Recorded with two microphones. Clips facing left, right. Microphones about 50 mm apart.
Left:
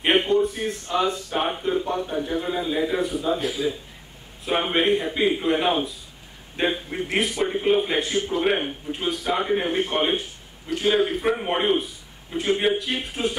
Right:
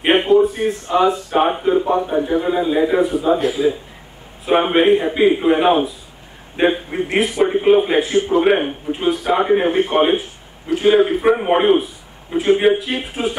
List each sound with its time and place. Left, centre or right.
0.0 s a sound: centre
0.3 s a man's voice: centre; by 8.9 s right
8.9 s a man's voice: centre